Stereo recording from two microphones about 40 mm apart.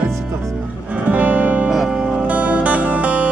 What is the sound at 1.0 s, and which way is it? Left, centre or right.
Music, right.